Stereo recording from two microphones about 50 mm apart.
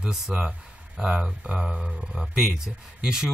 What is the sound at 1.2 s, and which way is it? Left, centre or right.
Speech, centre.